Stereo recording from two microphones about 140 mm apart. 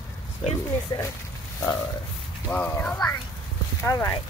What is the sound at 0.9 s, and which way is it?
Speech, 30° left (ahead or behind).